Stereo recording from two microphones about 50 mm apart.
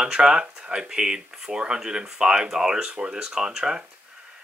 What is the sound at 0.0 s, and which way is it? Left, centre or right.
Speech, centre.